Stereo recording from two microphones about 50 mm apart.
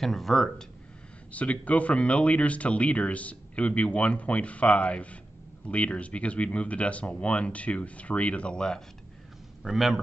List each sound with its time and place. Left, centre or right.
0.0 s speech: centre
1.3 s speech: left
9.6 s a man's voice: centre